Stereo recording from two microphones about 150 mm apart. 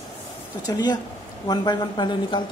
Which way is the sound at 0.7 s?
25° left (ahead or behind).